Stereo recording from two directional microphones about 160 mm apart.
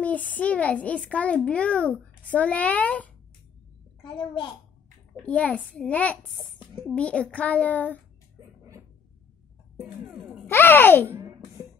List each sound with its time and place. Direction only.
0.0 s a child's voice: 10° left (ahead or behind)
4.0 s a child's voice: 30° left (ahead or behind)
5.2 s a child's voice: 10° left (ahead or behind)
9.8 s music: 5° right (ahead or behind)
10.4 s a child's voice: 15° left (ahead or behind)
11.1 s a sound: 15° right (ahead or behind)